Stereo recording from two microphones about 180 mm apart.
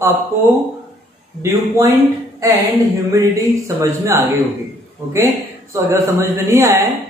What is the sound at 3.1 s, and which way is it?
Speech, 15° right (ahead or behind).